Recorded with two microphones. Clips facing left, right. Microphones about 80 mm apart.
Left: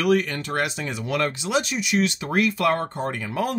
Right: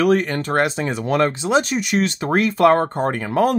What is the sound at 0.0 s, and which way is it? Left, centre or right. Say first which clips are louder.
Speech: right 4 dB; right.